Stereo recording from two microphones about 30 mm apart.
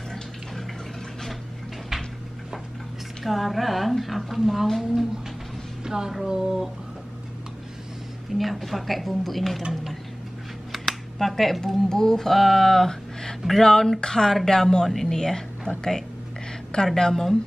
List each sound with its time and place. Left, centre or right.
3.3 s a woman's voice: centre
5.9 s music: centre
6.2 s speech: centre
8.3 s a woman's voice: centre
10.7 s a sound: centre
11.6 s speech: centre
12.3 s speech: centre
16.7 s speech: left